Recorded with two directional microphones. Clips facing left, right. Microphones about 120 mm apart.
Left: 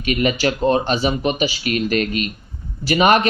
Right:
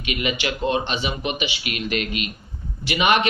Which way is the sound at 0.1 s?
40° left (ahead or behind).